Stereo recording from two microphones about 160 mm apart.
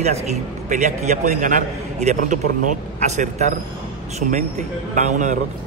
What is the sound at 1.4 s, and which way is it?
A man's voice, 50° right (ahead or behind).